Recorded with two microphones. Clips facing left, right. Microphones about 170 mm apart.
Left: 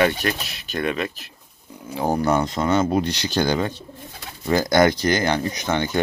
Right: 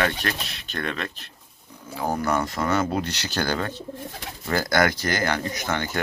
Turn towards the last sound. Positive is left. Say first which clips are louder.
# left 4 dB
turn(degrees=20)  # may be behind; listen again after turning